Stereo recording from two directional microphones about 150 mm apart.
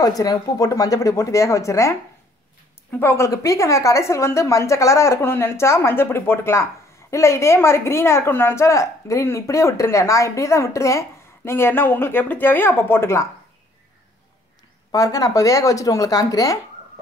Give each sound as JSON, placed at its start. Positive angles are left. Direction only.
{"t": 0.0, "sound": "a woman's voice", "side_deg": 25}
{"t": 3.0, "sound": "a woman's voice", "side_deg": 15}
{"t": 14.9, "sound": "a woman's voice", "side_deg": 25}